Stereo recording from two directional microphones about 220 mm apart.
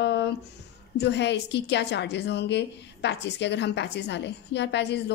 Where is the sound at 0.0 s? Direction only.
50° left (ahead or behind).